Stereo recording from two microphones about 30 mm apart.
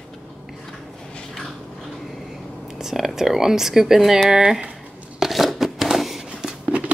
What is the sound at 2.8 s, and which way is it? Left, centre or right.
Speech, centre.